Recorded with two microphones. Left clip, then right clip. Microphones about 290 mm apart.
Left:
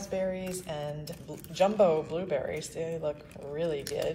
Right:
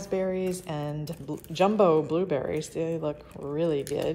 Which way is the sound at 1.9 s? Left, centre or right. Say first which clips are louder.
Right 5 dB; right.